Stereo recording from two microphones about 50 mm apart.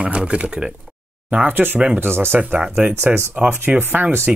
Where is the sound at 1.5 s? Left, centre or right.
Right.